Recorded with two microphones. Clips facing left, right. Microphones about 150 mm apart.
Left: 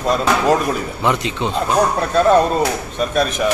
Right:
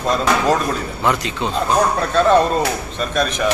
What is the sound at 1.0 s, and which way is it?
Speech, 20° left (ahead or behind).